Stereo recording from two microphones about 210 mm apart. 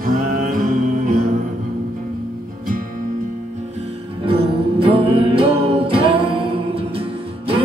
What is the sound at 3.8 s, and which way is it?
Music, 25° right (ahead or behind).